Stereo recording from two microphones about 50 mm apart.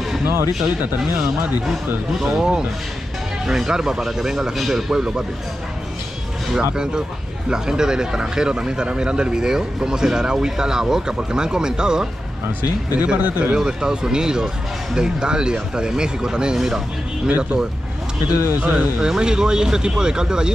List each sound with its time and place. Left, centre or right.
0.2 s speech: right
2.1 s speech: centre
6.5 s speech: centre
13.6 s speech: centre
18.6 s speech: right
18.9 s speech: centre